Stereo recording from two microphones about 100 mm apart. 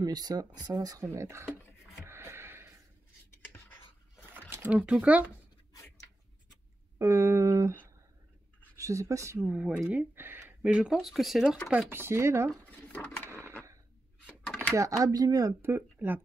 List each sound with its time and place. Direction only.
0.0 s speech: 40° right (ahead or behind)
2.0 s a sound: 25° right (ahead or behind)
4.3 s speech: 20° right (ahead or behind)
7.0 s a sound: 30° right (ahead or behind)
8.7 s speech: 30° right (ahead or behind)
9.5 s speech: 10° right (ahead or behind)
11.9 s speech: 25° right (ahead or behind)
12.6 s dishes: 10° left (ahead or behind)
14.4 s a sound: 5° left (ahead or behind)
14.7 s speech: 30° right (ahead or behind)
15.6 s speech: 25° right (ahead or behind)